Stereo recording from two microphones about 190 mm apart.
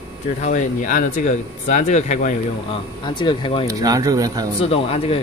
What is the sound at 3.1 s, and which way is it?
Speech, 25° left (ahead or behind).